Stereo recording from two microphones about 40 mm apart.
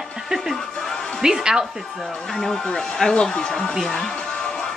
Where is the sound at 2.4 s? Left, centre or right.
Centre.